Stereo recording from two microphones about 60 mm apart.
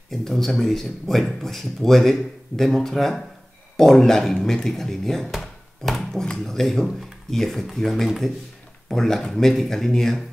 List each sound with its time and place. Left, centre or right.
0.1 s speech: centre